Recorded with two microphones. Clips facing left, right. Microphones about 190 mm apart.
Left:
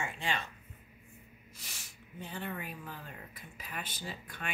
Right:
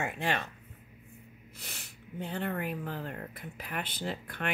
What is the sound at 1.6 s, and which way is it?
A woman's voice, 60° right (ahead or behind).